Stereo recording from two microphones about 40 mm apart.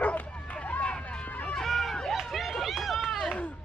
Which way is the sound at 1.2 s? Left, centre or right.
Left.